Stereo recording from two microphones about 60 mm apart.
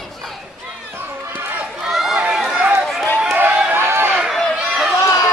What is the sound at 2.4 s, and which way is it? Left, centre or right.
Run, centre.